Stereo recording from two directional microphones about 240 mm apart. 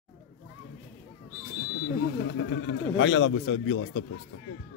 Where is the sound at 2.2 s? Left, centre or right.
Left.